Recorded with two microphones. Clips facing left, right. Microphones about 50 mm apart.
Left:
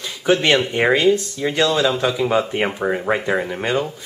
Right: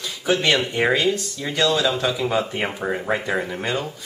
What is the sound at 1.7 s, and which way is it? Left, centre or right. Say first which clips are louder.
Speech: left 3 dB; centre.